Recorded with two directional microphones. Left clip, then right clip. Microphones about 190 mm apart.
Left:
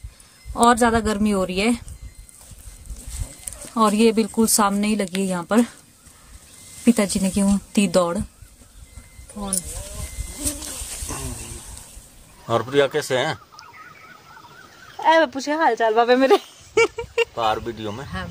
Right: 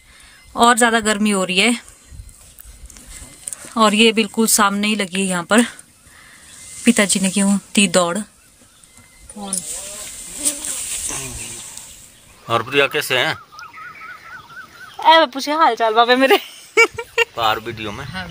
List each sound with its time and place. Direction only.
0.6 s a woman's voice: centre (ahead or behind)
3.7 s a woman's voice: centre (ahead or behind)
6.8 s a woman's voice: centre (ahead or behind)
9.4 s speech: 30° left (ahead or behind)
10.6 s a sound: 20° left (ahead or behind)
12.4 s speech: 15° left (ahead or behind)
15.0 s a sound: 5° left (ahead or behind)
17.6 s speech: 20° left (ahead or behind)